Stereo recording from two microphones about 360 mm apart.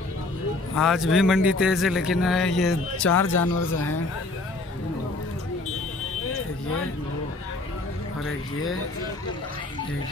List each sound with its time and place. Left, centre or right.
0.7 s speech: centre
3.3 s speech: left
3.7 s speech: left